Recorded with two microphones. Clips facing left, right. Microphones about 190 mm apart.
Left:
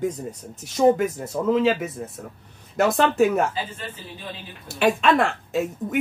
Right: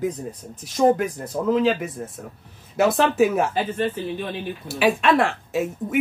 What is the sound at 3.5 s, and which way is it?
Speech, 55° right (ahead or behind).